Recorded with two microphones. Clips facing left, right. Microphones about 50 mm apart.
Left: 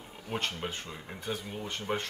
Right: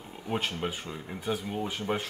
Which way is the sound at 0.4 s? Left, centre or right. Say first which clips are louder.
Right 3 dB; centre.